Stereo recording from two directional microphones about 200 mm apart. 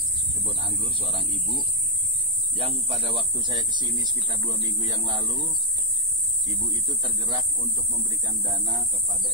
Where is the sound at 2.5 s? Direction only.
30° right (ahead or behind).